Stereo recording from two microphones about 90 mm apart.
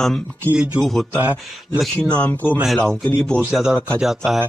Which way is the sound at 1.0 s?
20° right (ahead or behind).